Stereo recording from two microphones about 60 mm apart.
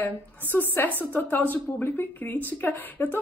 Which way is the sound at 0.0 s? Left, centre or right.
Left.